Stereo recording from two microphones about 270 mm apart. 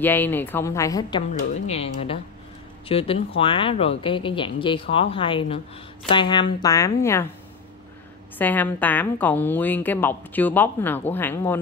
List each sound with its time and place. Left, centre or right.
0.0 s a woman's voice: centre
1.5 s a woman's voice: left
8.4 s a woman's voice: centre